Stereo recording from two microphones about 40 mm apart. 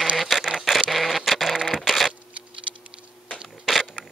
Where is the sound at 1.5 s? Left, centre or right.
Centre.